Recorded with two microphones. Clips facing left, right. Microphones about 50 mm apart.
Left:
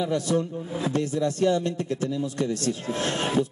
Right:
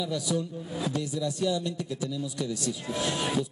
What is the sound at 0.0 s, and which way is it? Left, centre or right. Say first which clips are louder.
A man's voice: left 5 dB; left.